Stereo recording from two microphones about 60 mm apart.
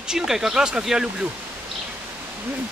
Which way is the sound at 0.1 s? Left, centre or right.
Centre.